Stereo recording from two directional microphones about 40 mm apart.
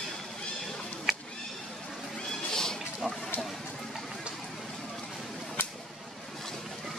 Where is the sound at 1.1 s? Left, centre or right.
Centre.